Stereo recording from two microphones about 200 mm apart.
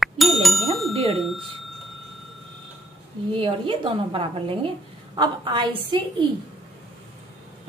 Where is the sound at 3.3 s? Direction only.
25° right (ahead or behind).